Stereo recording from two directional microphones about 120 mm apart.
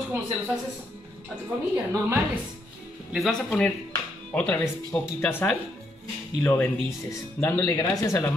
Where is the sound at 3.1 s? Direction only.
Centre (ahead or behind).